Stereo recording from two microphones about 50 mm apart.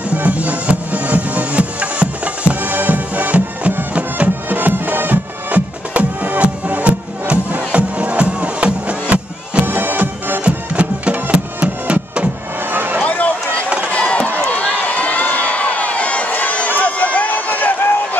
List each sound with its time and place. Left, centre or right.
0.1 s music: right
9.7 s music: right
10.4 s music: right
12.7 s a sound: right
13.0 s a sound: left
13.8 s run: left